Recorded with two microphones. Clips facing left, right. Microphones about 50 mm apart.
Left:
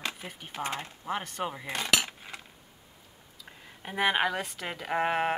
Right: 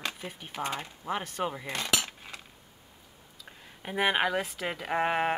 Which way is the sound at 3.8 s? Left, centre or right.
Centre.